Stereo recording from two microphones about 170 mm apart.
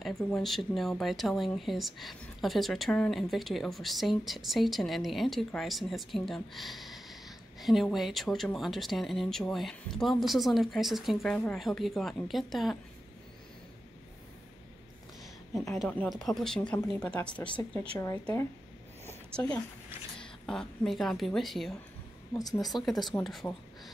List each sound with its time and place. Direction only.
0.0 s speech: centre (ahead or behind)
15.5 s speech: centre (ahead or behind)
17.6 s speech: 20° left (ahead or behind)
20.2 s a woman's voice: 5° left (ahead or behind)
22.4 s speech: 20° left (ahead or behind)
22.7 s speech: centre (ahead or behind)